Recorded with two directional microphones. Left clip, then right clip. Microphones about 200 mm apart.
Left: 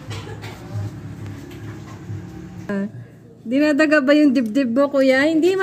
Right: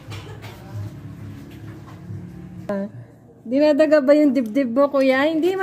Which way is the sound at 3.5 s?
10° left (ahead or behind).